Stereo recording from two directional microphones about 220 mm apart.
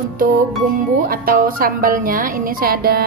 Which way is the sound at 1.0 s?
40° right (ahead or behind).